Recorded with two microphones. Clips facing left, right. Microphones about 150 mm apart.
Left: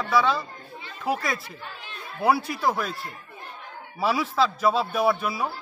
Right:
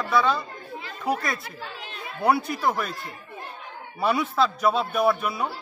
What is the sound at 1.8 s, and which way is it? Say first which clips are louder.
Chatter: right 3 dB; 75° right (ahead or behind).